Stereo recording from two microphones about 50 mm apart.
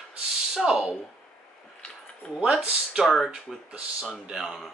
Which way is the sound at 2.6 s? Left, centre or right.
Centre.